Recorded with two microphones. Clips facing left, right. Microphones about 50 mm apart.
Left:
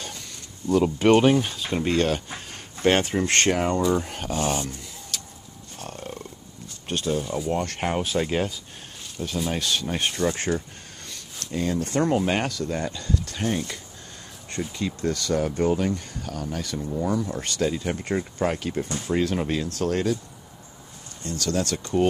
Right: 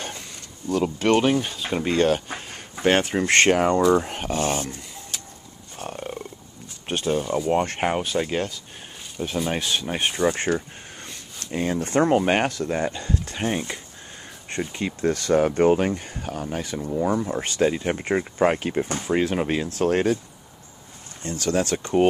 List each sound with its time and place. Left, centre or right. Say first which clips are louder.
0.7 s speech: left 2 dB; centre
3.2 s speech: right 4 dB; right
5.1 s a sound: left 1 dB; right
5.8 s wild animals: right 4 dB; centre
6.9 s speech: right 3 dB; right
8.0 s speech: even; centre
9.5 s speech: right 1 dB; centre
11.5 s speech: right 2 dB; right
21.2 s speech: right 3 dB; right